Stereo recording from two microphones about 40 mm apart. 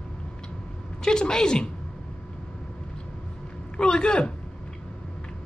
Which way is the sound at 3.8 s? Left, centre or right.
Left.